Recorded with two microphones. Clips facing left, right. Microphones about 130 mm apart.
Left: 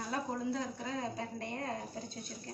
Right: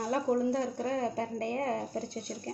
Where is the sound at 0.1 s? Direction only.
55° right (ahead or behind).